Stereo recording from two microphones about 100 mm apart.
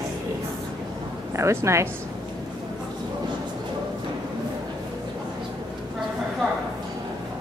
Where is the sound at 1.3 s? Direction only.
30° right (ahead or behind).